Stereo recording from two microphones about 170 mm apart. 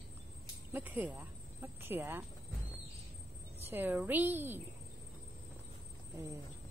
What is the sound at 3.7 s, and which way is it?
Speech, 10° right (ahead or behind).